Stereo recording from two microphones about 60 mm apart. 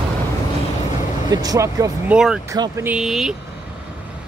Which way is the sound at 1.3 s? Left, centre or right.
Right.